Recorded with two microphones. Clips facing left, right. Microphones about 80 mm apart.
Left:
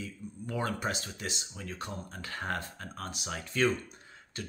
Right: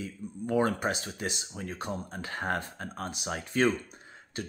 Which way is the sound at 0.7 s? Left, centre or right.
Right.